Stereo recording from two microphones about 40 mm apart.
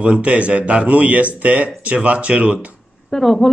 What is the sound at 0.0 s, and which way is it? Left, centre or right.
Speech, right.